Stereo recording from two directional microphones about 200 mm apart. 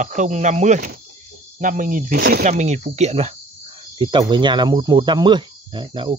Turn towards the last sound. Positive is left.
turn(degrees=-25)  # may be behind; listen again after turning